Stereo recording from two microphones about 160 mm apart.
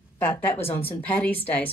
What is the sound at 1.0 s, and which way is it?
Speech, 10° left (ahead or behind).